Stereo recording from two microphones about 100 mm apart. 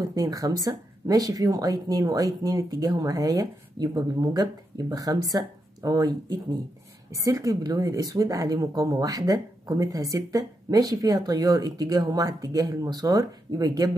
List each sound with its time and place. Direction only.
0.1 s speech: 35° right (ahead or behind)